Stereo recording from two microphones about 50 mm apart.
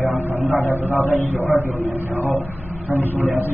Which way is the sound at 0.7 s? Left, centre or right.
Left.